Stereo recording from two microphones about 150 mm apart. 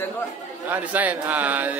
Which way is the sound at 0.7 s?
10° right (ahead or behind).